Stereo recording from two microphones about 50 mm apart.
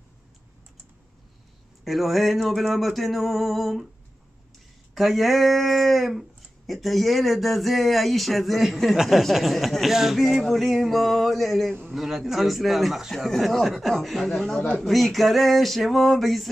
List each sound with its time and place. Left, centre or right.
1.9 s speech: centre
4.9 s speech: centre